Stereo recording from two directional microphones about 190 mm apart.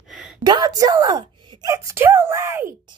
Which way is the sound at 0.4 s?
20° right (ahead or behind).